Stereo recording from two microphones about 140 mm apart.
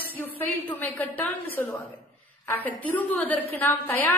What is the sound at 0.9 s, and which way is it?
Speech, 10° left (ahead or behind).